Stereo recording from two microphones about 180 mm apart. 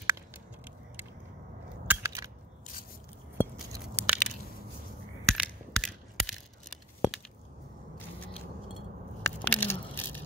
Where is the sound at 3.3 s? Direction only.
10° right (ahead or behind).